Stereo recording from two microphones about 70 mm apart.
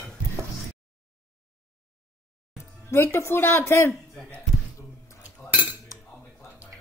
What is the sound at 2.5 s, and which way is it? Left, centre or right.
Speech, left.